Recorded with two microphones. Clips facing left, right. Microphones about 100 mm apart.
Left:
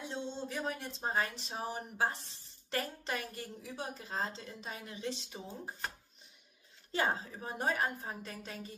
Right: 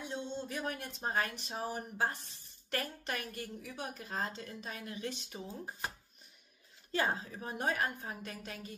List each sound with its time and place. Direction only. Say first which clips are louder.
0.1 s a woman's voice: even; 30° left (ahead or behind)
6.9 s a woman's voice: even; 25° left (ahead or behind)